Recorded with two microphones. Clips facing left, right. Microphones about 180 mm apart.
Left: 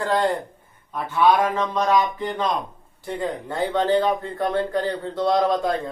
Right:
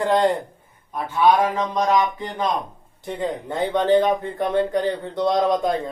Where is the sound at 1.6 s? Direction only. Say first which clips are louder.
Right 1 dB; 15° right (ahead or behind).